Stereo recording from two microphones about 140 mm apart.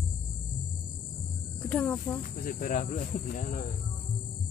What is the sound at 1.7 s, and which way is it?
Speech, 10° left (ahead or behind).